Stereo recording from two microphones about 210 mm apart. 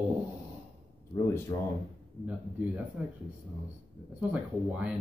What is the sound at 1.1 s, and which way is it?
Speech, 15° left (ahead or behind).